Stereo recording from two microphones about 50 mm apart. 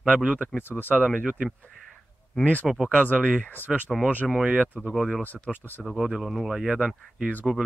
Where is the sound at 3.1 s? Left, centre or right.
Right.